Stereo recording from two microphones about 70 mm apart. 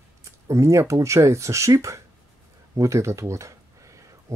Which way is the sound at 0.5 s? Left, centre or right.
Right.